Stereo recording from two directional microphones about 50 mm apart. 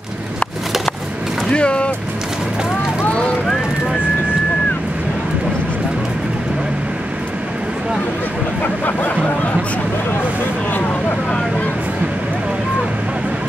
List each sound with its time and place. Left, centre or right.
1.5 s speech: left